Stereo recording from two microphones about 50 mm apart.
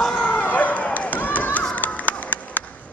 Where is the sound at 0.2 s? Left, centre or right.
Left.